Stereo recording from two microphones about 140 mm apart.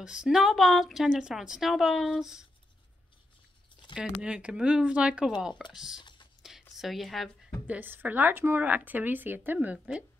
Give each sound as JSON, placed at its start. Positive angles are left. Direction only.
{"t": 0.0, "sound": "speech", "side_deg": -5}
{"t": 3.9, "sound": "speech", "side_deg": -5}
{"t": 5.9, "sound": "typing", "side_deg": 35}
{"t": 6.4, "sound": "a sound", "side_deg": 0}
{"t": 6.8, "sound": "speech", "side_deg": 0}